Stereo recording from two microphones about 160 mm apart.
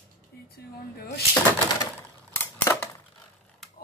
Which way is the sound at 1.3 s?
20° left (ahead or behind).